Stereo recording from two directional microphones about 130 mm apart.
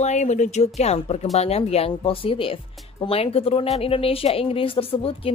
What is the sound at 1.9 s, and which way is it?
Speech, 40° left (ahead or behind).